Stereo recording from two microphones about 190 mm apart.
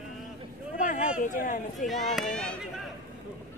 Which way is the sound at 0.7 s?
45° left (ahead or behind).